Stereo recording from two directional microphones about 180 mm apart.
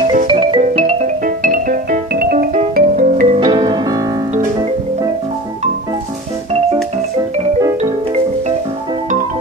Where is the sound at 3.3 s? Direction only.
25° right (ahead or behind).